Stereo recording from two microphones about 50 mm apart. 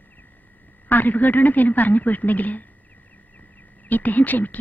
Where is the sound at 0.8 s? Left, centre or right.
Left.